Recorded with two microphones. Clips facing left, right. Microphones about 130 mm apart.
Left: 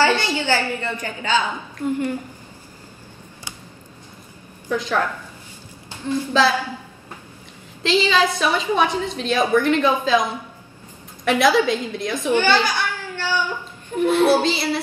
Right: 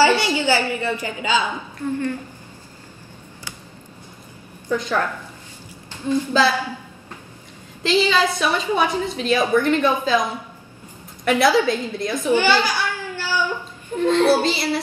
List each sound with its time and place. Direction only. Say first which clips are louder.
0.0 s a woman's voice: right 2 dB; 10° right (ahead or behind)
1.9 s a child's voice: left 1 dB; 15° left (ahead or behind)
4.6 s a woman's voice: even; 5° left (ahead or behind)
6.4 s a woman's voice: left 1 dB; centre (ahead or behind)
7.8 s a woman's voice: even; centre (ahead or behind)
11.2 s a woman's voice: even; centre (ahead or behind)
12.4 s laughter: left 2 dB; 10° right (ahead or behind)
13.9 s a child's voice: even; 15° left (ahead or behind)
14.4 s a woman's voice: even; centre (ahead or behind)